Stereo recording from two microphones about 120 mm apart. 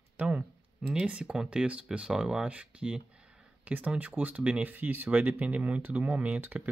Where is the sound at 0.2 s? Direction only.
10° right (ahead or behind).